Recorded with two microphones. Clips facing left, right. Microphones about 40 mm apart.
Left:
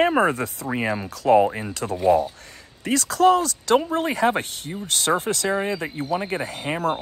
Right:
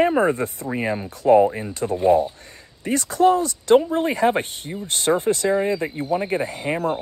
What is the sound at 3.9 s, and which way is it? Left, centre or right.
Speech, left.